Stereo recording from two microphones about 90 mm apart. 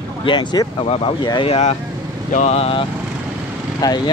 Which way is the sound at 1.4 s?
90° left.